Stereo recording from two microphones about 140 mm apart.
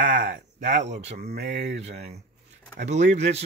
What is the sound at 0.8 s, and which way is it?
Speech, 50° right (ahead or behind).